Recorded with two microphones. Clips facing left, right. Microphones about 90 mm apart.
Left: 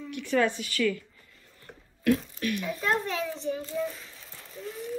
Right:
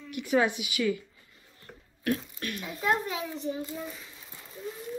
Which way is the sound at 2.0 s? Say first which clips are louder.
Left 5 dB; 35° right (ahead or behind).